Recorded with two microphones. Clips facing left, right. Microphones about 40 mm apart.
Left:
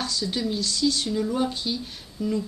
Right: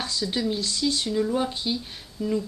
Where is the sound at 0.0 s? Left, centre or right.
Centre.